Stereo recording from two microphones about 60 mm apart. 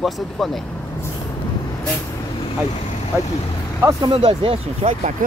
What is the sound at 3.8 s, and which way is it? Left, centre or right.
Speech, right.